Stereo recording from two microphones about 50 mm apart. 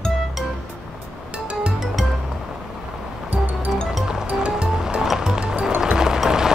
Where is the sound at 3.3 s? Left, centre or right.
Right.